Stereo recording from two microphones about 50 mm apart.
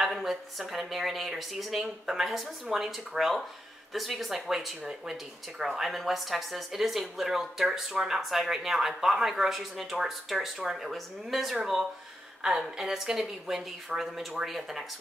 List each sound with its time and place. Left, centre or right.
0.0 s speech: centre
12.6 s speech: centre